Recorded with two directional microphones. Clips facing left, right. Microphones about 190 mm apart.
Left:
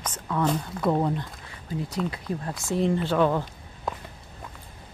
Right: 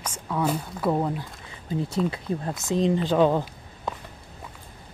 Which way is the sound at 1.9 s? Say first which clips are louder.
Right 3 dB; 25° right (ahead or behind).